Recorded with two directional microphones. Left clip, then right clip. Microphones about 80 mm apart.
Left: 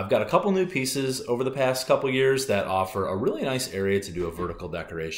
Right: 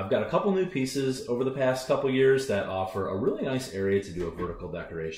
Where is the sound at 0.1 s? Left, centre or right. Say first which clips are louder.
Left 4 dB; left.